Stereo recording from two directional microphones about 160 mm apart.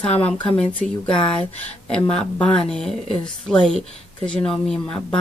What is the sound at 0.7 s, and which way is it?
Speech, 30° left (ahead or behind).